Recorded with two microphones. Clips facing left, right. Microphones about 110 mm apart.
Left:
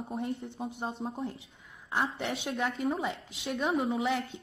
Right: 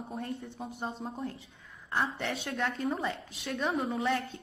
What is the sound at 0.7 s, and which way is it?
Speech, 25° left (ahead or behind).